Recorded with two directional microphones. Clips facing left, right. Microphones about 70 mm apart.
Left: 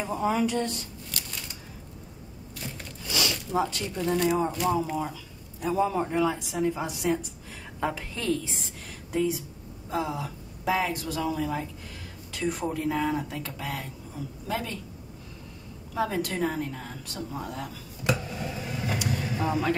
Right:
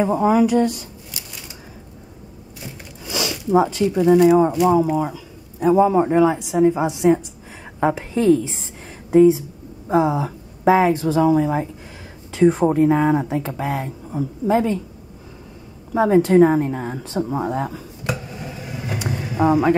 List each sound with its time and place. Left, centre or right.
0.3 s speech: centre
3.1 s zipper: centre
3.8 s speech: centre
5.6 s speech: right
15.9 s speech: right
17.0 s speech: right
17.3 s speech: right
18.0 s a sound: centre
18.9 s vehicle: right